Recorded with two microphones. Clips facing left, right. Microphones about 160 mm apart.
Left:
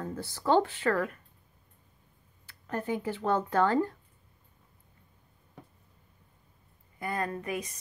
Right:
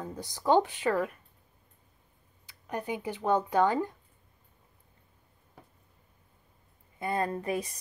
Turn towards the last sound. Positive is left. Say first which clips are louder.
# right 3 dB
turn(degrees=-30)  # may be behind; listen again after turning